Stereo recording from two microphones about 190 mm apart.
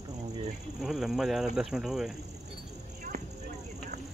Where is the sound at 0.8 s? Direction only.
Centre (ahead or behind).